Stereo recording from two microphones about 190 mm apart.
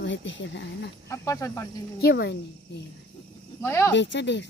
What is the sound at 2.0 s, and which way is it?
Speech, 60° left (ahead or behind).